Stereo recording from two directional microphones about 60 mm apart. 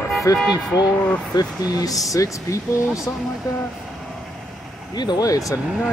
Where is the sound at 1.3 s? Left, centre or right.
Left.